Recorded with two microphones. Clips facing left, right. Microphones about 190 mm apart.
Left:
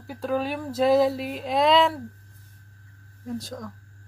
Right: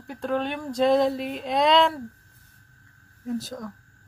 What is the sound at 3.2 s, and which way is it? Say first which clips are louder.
Speech: right 2 dB; 5° right (ahead or behind).